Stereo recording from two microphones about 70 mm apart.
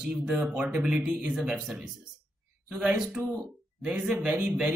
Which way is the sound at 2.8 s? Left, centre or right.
Centre.